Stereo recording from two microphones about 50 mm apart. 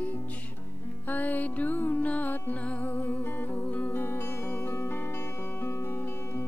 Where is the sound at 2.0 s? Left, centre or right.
Left.